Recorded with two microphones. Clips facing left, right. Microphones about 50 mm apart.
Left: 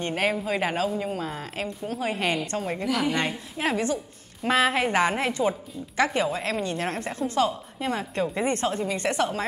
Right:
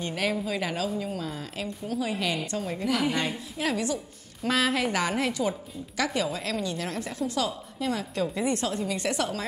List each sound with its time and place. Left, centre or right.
0.0 s a woman's voice: left
2.8 s a woman's voice: centre
3.5 s a woman's voice: left